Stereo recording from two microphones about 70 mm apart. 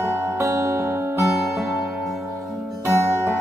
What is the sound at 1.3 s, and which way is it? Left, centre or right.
Music, centre.